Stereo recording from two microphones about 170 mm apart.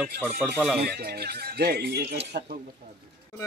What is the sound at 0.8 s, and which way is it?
Speech, 70° right (ahead or behind).